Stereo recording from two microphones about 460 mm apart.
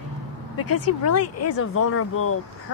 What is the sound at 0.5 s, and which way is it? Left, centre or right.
Speech, left.